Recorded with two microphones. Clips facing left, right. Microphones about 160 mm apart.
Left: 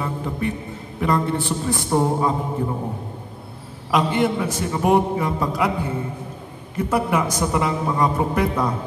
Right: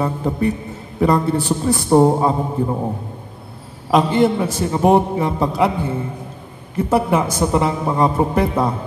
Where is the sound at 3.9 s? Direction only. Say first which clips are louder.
Right 5 dB; 30° right (ahead or behind).